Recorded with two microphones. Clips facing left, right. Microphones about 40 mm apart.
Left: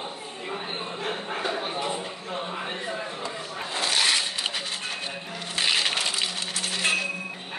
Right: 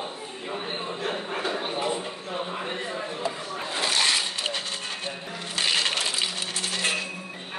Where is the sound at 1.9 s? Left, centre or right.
Centre.